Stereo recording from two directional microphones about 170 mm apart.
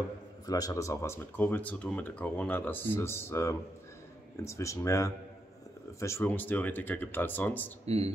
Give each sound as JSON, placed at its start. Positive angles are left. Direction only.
{"t": 0.5, "sound": "speech", "side_deg": 20}
{"t": 7.8, "sound": "speech", "side_deg": -35}